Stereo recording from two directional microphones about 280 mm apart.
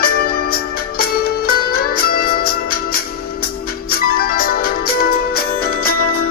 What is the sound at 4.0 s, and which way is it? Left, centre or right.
Music, left.